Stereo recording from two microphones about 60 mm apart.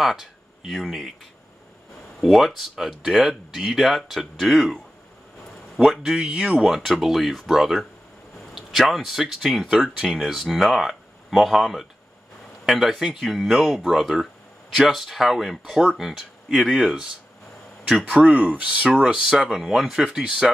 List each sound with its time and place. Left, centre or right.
0.0 s speech: centre
2.1 s speech: centre
5.8 s speech: centre
6.6 s speech: centre
17.8 s speech: centre